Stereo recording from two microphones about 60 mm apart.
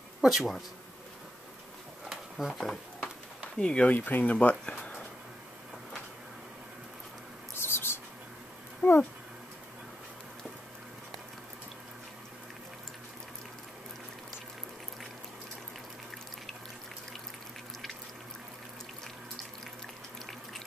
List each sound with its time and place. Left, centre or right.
0.2 s speech: centre
2.0 s a sound: centre
3.5 s speech: centre
3.9 s speech: left
7.5 s a sound: left
8.8 s speech: left